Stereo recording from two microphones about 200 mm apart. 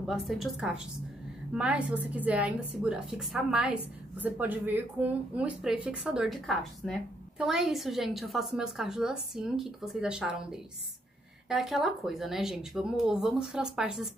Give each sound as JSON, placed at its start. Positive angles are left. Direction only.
{"t": 0.0, "sound": "a woman's voice", "side_deg": 0}